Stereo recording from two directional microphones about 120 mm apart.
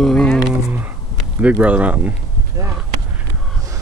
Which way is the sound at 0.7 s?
15° right (ahead or behind).